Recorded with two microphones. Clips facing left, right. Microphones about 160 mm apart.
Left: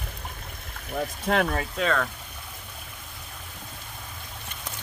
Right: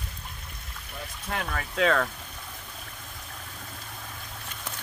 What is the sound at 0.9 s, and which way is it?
Speech, 60° left (ahead or behind).